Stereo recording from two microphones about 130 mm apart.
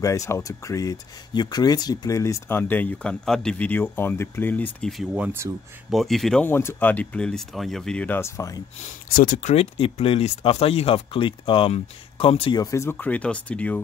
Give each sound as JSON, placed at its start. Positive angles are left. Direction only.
{"t": 0.0, "sound": "speech", "side_deg": 25}
{"t": 4.7, "sound": "speech", "side_deg": 5}
{"t": 5.1, "sound": "speech", "side_deg": -15}
{"t": 5.9, "sound": "speech", "side_deg": 0}
{"t": 6.4, "sound": "speech", "side_deg": 20}
{"t": 8.2, "sound": "speech", "side_deg": 25}
{"t": 9.1, "sound": "speech", "side_deg": 90}
{"t": 12.5, "sound": "speech", "side_deg": 20}
{"t": 12.9, "sound": "speech", "side_deg": 10}